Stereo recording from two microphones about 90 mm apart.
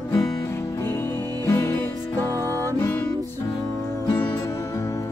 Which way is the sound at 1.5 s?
30° left (ahead or behind).